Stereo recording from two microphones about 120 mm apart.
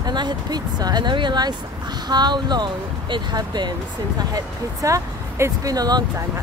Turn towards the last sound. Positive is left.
turn(degrees=-35)  # may be behind; listen again after turning